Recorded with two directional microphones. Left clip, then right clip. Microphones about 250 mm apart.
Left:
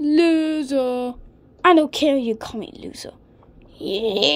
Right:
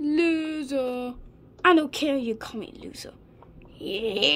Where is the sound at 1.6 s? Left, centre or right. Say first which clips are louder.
Left 5 dB; centre.